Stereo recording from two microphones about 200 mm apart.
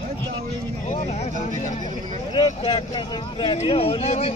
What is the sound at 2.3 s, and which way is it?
Speech, 25° left (ahead or behind).